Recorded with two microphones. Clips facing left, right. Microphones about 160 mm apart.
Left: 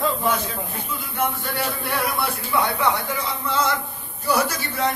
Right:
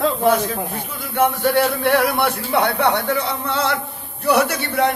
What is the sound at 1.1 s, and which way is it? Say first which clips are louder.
A man's voice: right 10 dB; 65° right (ahead or behind).